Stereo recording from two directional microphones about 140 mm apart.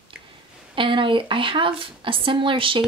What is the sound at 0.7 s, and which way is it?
Speech, 35° right (ahead or behind).